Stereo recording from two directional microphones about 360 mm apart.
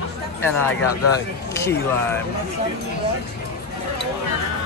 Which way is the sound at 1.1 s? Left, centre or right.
Centre.